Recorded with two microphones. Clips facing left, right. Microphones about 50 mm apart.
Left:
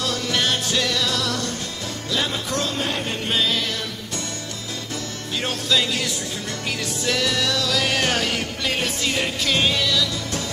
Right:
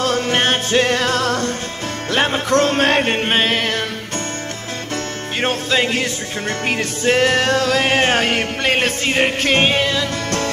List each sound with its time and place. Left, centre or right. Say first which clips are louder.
0.0 s music: right 6 dB; right
5.4 s music: right 5 dB; right